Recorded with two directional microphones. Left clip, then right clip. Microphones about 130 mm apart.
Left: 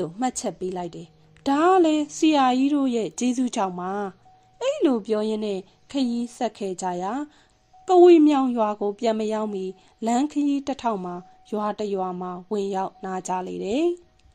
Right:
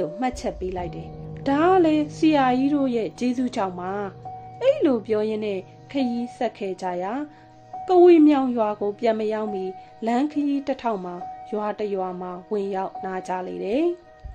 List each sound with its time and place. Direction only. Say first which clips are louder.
0.0 s a woman's voice: right 1 dB; 60° left (ahead or behind)